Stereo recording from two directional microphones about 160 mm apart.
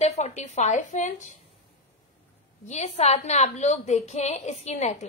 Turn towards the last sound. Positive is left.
turn(degrees=45)  # may be behind; listen again after turning